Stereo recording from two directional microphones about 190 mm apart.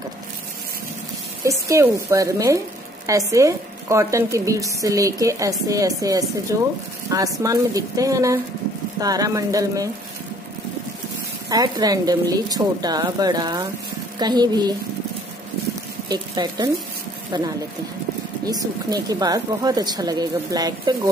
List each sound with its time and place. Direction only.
1.7 s a woman's voice: 15° right (ahead or behind)
11.4 s speech: 20° right (ahead or behind)
16.1 s speech: 20° right (ahead or behind)